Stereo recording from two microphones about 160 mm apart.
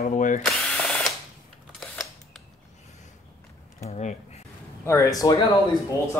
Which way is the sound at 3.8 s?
45° left (ahead or behind).